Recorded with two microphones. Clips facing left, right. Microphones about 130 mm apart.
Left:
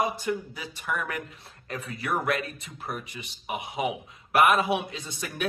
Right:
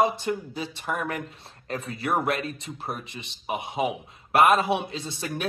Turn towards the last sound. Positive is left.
turn(degrees=-30)  # may be behind; listen again after turning